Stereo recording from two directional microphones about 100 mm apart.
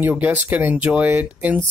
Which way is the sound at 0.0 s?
20° right (ahead or behind).